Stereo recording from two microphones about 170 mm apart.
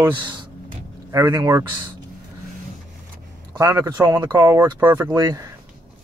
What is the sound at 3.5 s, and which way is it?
Speech, 20° right (ahead or behind).